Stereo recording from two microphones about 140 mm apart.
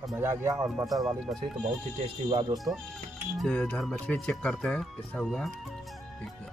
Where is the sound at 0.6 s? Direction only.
5° right (ahead or behind).